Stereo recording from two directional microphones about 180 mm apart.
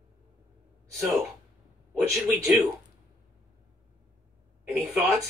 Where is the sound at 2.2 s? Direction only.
10° right (ahead or behind).